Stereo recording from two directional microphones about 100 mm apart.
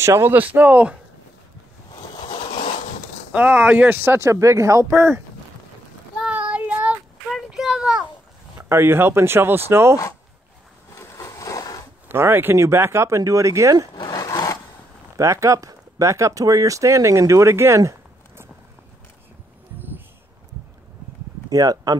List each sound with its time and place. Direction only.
0.0 s speech: 25° right (ahead or behind)
3.3 s speech: 15° right (ahead or behind)
6.2 s child singing: 10° right (ahead or behind)
7.3 s a sound: 5° right (ahead or behind)
8.5 s speech: 25° right (ahead or behind)
11.0 s a sound: 30° left (ahead or behind)
12.1 s speech: 20° right (ahead or behind)
13.9 s rub: 35° left (ahead or behind)
15.1 s speech: 30° right (ahead or behind)
21.5 s speech: 40° right (ahead or behind)